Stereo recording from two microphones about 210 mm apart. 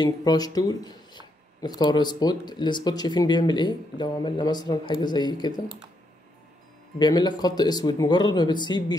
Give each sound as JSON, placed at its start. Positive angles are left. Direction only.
{"t": 0.0, "sound": "speech", "side_deg": 20}
{"t": 7.0, "sound": "speech", "side_deg": 20}